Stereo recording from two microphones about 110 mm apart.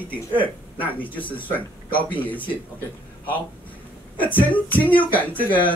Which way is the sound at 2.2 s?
15° left (ahead or behind).